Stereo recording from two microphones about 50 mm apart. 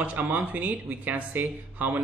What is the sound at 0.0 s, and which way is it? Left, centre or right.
Speech, right.